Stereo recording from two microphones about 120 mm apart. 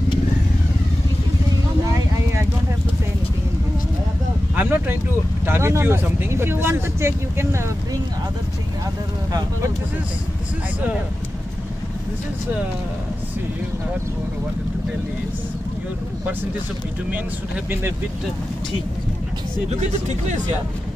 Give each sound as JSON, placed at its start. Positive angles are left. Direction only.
{"t": 4.6, "sound": "a sound", "side_deg": -15}
{"t": 5.5, "sound": "speech", "side_deg": -20}
{"t": 19.7, "sound": "speech", "side_deg": -75}